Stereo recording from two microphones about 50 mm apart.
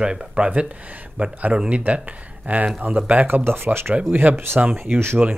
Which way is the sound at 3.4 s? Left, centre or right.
Right.